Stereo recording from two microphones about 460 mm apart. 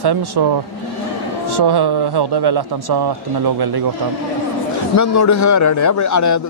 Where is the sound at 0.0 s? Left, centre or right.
Right.